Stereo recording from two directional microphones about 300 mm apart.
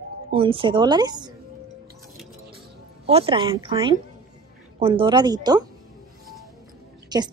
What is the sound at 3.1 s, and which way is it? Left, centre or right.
A woman's voice, centre.